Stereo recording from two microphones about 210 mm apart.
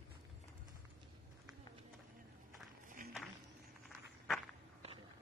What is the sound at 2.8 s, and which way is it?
Run, 40° right (ahead or behind).